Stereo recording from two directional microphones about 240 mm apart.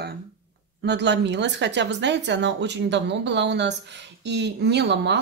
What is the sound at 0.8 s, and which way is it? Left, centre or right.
Speech, right.